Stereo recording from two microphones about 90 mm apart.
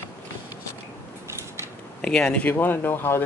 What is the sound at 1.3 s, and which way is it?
Mechanisms, 30° right (ahead or behind).